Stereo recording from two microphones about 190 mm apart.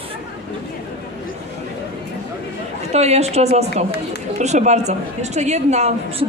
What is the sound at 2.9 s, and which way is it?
A woman's voice, 35° right (ahead or behind).